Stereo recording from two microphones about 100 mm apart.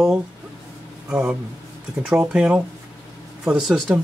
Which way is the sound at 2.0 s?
10° right (ahead or behind).